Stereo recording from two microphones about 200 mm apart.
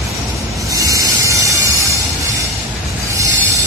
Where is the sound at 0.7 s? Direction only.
15° right (ahead or behind).